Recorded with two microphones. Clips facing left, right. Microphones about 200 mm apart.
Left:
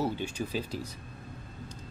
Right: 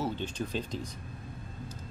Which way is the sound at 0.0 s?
10° left (ahead or behind).